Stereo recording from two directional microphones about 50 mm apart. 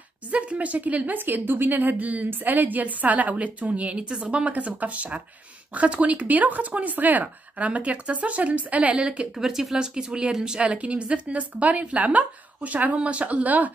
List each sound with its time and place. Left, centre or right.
0.3 s a woman's voice: right
9.3 s speech: centre
10.6 s speech: right